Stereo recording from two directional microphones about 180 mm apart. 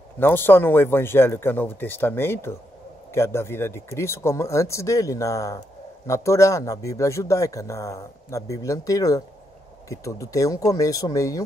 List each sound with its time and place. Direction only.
0.2 s speech: 10° left (ahead or behind)